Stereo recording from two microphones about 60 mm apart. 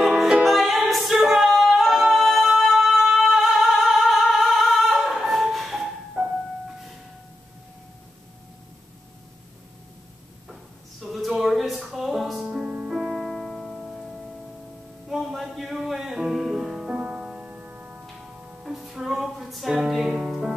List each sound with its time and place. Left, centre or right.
0.2 s music: centre
0.8 s a capella: centre
6.2 s music: centre
10.5 s a sound: centre
12.4 s music: centre
12.9 s music: centre; by 18.0 s right
18.1 s music: centre